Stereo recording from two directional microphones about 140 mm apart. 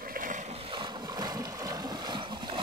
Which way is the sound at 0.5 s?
40° right (ahead or behind).